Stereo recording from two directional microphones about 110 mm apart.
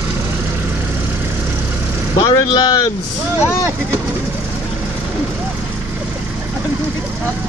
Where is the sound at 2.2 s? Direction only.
40° left (ahead or behind).